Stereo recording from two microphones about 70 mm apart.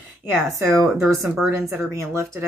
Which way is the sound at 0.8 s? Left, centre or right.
Right.